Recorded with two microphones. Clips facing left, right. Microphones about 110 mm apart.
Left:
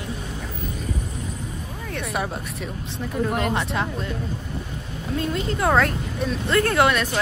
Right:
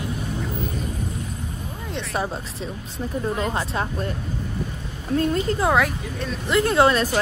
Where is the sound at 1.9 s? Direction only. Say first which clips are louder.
Right 1 dB; 30° right (ahead or behind).